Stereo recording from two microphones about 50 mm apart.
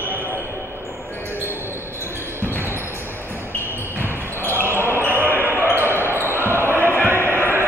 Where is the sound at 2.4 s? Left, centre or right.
Right.